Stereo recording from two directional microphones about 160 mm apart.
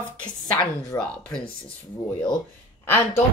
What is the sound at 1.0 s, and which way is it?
Speech, 5° left (ahead or behind).